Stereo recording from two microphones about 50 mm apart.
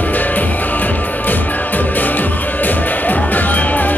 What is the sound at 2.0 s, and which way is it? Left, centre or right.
Music, left.